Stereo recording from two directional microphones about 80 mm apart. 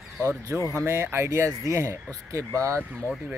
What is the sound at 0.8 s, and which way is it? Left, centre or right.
Speech, right.